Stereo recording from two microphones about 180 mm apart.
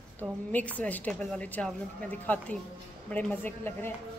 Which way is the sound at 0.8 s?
10° left (ahead or behind).